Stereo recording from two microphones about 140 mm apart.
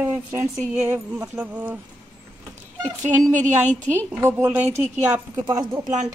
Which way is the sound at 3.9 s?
15° right (ahead or behind).